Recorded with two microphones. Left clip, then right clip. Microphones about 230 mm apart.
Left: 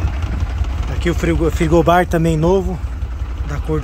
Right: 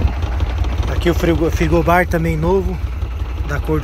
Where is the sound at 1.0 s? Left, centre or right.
Centre.